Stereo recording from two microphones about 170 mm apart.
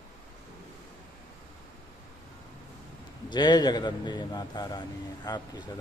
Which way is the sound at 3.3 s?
25° left (ahead or behind).